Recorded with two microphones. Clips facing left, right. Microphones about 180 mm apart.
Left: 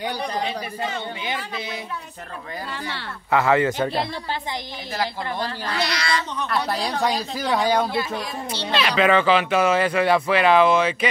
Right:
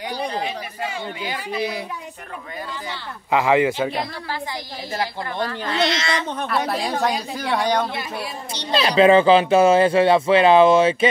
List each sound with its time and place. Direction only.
1.2 s speech: 25° left (ahead or behind)
3.3 s speech: 15° right (ahead or behind)
3.9 s speech: 25° left (ahead or behind)
5.7 s speech: 25° right (ahead or behind)
6.5 s speech: centre (ahead or behind)
7.9 s speech: 15° right (ahead or behind)
8.7 s speech: 30° right (ahead or behind)